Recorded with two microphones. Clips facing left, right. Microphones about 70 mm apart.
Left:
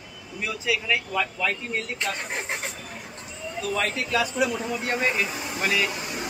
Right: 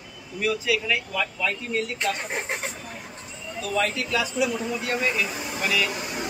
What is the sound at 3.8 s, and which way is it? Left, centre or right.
A man's voice, left.